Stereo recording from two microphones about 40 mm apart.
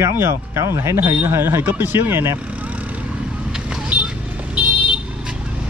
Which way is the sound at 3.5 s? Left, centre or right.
Centre.